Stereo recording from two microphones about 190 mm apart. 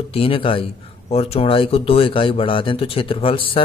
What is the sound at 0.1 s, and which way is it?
Speech, 30° left (ahead or behind).